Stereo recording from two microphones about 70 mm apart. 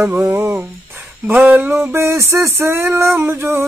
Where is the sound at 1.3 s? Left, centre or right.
Right.